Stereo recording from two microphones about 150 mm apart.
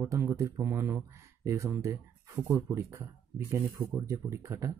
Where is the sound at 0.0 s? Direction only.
15° right (ahead or behind).